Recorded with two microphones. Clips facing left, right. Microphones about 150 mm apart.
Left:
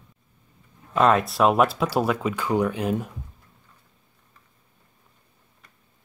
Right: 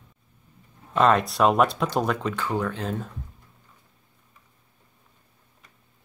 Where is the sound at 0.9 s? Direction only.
Centre (ahead or behind).